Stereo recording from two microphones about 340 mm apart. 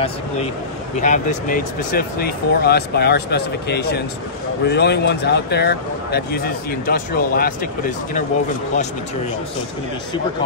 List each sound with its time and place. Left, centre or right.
1.0 s speech: left